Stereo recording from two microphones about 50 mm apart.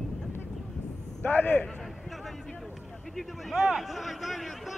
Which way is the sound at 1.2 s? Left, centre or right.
Left.